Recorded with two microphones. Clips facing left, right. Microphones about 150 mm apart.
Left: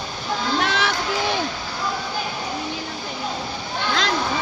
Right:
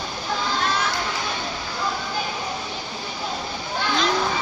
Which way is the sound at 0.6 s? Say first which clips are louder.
Left 2 dB; 75° left (ahead or behind).